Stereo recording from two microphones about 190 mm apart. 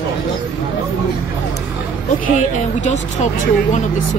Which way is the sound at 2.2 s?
40° left (ahead or behind).